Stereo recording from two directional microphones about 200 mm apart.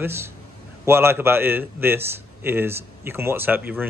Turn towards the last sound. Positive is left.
turn(degrees=-10)  # may be behind; listen again after turning